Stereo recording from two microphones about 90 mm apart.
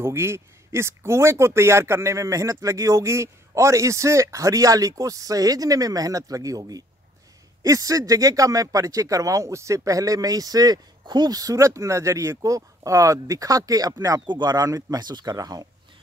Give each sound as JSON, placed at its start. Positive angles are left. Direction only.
{"t": 0.0, "sound": "speech", "side_deg": -30}